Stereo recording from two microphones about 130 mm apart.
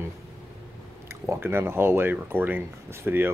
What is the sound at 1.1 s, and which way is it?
Speech, 20° right (ahead or behind).